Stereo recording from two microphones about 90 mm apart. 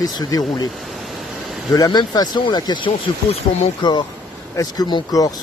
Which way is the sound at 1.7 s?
50° left (ahead or behind).